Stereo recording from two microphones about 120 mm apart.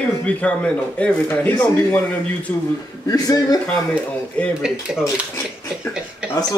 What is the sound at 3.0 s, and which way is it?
Speech, 30° left (ahead or behind).